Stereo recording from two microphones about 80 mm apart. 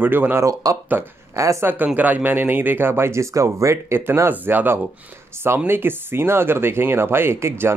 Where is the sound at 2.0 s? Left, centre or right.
Right.